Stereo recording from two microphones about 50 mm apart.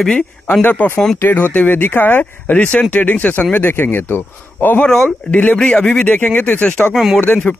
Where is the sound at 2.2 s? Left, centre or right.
Left.